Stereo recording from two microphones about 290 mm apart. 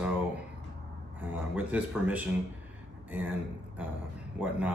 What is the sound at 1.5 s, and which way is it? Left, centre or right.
A man's voice, centre.